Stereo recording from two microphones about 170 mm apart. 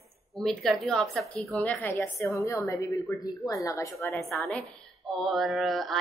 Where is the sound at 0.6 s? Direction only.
Centre (ahead or behind); by 4.1 s 20° left (ahead or behind).